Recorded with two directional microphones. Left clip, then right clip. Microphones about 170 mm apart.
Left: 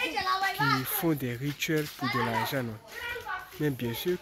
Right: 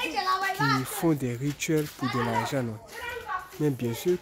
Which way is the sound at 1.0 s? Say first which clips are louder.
Right 3 dB; 10° right (ahead or behind).